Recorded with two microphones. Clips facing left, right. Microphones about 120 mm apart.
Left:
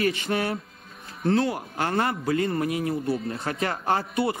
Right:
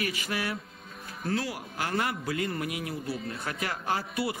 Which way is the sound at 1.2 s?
30° left (ahead or behind).